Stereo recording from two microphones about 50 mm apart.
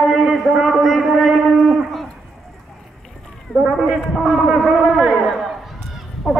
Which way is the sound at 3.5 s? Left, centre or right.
Left.